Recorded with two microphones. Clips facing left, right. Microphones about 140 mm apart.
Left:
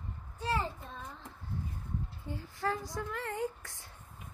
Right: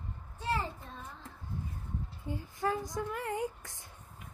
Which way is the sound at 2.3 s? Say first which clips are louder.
Right 2 dB; 20° right (ahead or behind).